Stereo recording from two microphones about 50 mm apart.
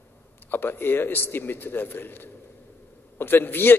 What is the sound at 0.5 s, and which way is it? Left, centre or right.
A man's voice, left.